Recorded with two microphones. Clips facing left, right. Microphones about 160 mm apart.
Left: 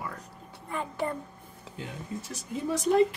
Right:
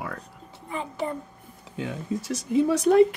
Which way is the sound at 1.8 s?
90° right.